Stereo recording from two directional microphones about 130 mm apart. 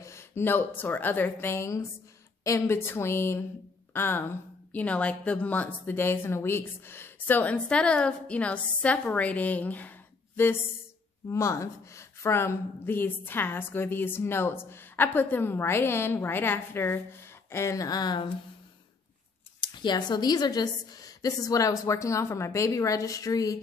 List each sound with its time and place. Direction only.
0.0 s a woman's voice: 20° left (ahead or behind)
19.6 s a woman's voice: 35° left (ahead or behind)